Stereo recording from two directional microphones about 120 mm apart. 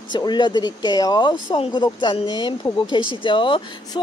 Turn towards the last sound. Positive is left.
turn(degrees=45)  # may be behind; listen again after turning